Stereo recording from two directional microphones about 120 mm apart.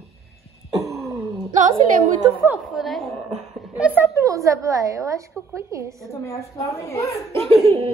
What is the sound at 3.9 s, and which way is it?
A woman's voice, 25° right (ahead or behind).